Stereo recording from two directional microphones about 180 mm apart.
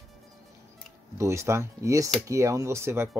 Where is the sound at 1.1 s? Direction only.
15° right (ahead or behind).